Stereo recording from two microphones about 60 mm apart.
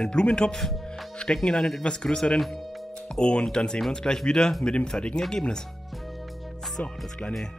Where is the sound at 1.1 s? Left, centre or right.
Centre.